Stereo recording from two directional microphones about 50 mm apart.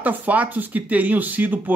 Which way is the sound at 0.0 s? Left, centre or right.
Right.